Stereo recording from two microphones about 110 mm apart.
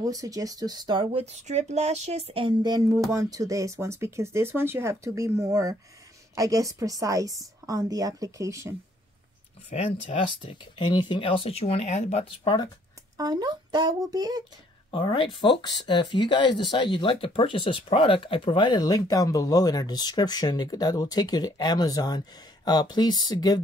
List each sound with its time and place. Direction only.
0.0 s speech: 30° right (ahead or behind)
1.1 s speech: 80° right
2.6 s speech: 35° right (ahead or behind)
9.7 s speech: 75° left (ahead or behind)
10.6 s speech: 45° left (ahead or behind); by 12.4 s 75° left (ahead or behind)
13.2 s speech: 40° right (ahead or behind)
14.9 s speech: 50° left (ahead or behind)